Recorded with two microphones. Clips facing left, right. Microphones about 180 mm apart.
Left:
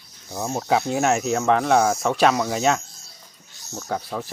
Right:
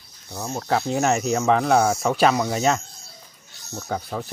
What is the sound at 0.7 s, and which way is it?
Speech, centre (ahead or behind).